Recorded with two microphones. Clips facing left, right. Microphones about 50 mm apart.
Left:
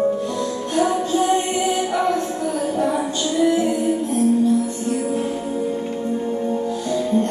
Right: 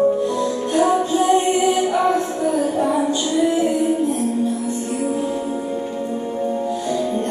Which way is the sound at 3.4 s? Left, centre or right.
Right.